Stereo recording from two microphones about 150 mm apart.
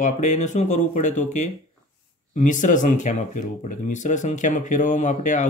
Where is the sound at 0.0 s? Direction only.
55° left (ahead or behind).